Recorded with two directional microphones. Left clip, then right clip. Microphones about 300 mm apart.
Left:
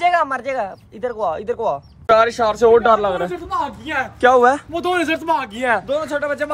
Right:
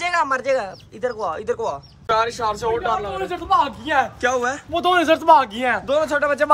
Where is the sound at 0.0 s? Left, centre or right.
Centre.